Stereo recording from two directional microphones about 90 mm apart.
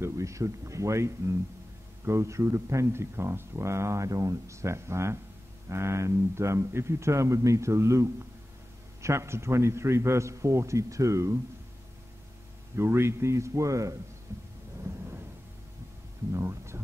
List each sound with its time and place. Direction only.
0.0 s speech: 35° right (ahead or behind)
12.7 s speech: 30° right (ahead or behind)
14.3 s thunder: 35° right (ahead or behind)
16.3 s speech: 30° right (ahead or behind)